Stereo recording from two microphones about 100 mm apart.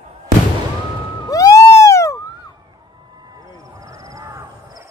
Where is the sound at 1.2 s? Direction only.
35° left (ahead or behind).